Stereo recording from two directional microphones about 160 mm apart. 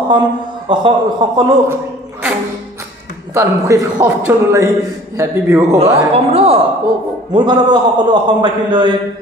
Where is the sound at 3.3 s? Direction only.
20° right (ahead or behind).